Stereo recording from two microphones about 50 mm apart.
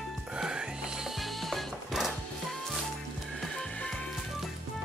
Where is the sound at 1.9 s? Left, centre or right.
Centre.